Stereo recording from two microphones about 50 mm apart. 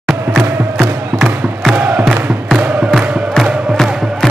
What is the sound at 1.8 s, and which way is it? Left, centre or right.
Music, right.